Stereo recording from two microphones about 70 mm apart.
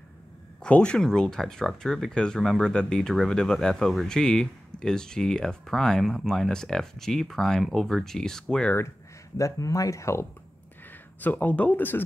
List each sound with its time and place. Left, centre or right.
0.6 s speech: centre
9.4 s speech: left
11.1 s speech: left